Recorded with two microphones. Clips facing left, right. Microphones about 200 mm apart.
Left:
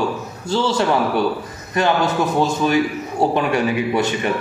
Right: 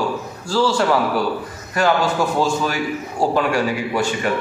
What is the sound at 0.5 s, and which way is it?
A man's voice, 20° left (ahead or behind).